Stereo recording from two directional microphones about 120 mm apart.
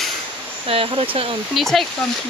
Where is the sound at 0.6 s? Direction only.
55° right (ahead or behind).